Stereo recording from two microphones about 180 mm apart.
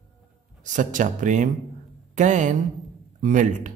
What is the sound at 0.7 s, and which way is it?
A man's voice, 45° right (ahead or behind).